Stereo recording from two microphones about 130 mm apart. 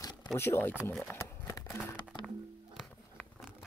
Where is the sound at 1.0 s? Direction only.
20° left (ahead or behind).